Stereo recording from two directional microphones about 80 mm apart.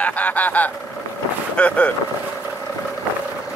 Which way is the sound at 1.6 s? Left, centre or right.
Centre.